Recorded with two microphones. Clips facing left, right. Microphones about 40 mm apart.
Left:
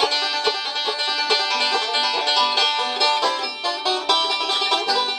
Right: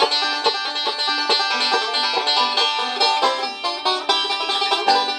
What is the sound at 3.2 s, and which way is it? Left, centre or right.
Music, centre.